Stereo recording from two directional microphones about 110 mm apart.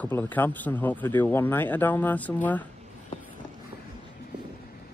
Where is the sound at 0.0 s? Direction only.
15° left (ahead or behind).